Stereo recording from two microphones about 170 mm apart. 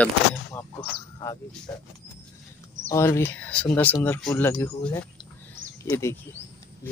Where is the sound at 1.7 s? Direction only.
15° left (ahead or behind).